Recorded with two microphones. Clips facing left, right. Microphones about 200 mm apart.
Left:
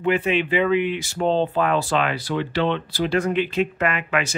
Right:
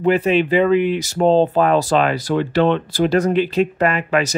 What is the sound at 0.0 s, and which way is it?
Speech, 40° right (ahead or behind).